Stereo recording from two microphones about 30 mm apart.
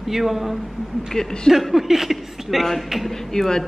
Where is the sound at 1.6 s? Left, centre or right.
Centre.